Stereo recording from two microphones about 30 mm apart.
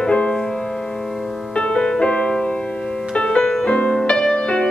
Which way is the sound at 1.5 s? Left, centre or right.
Left.